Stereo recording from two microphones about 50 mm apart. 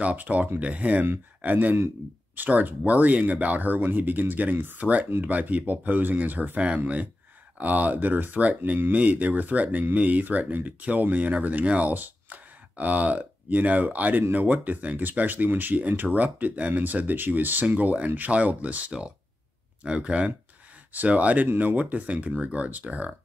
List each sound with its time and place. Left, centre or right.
0.0 s speech: right